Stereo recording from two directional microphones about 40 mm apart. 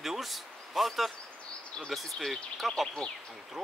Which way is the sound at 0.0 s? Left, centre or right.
Centre.